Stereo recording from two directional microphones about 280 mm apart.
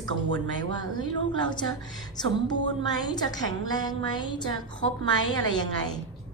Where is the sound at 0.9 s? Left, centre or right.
Centre.